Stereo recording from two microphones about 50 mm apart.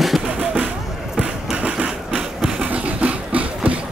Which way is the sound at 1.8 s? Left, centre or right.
Centre.